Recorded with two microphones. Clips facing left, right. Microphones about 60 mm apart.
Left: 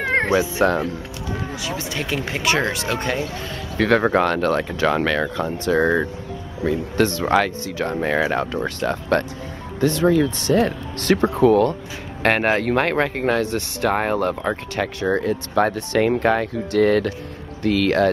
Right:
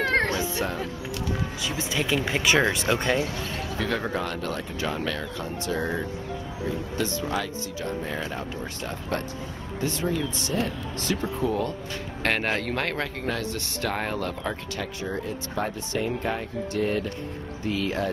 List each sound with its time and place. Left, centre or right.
0.0 s cat: left
0.4 s speech: left
1.6 s speech: centre
3.3 s speech: left
5.2 s speech: left
12.7 s speech: left
14.8 s speech: left